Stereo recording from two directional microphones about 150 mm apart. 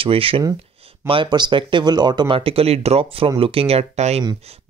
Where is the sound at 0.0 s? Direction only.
35° right (ahead or behind).